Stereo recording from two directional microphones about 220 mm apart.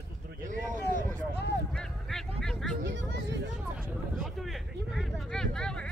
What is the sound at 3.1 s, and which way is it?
Speech, 50° right (ahead or behind).